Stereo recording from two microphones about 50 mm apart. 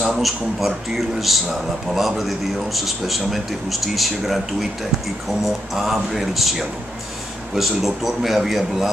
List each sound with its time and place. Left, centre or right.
0.0 s speech: centre